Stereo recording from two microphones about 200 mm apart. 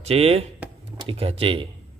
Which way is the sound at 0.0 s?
30° right (ahead or behind).